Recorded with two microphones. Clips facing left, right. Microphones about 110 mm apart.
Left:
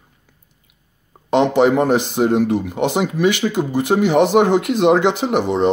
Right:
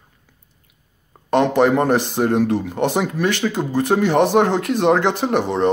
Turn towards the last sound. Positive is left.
turn(degrees=10)  # may be behind; listen again after turning